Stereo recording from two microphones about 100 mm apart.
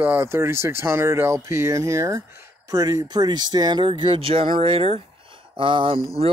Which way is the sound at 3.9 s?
55° right (ahead or behind).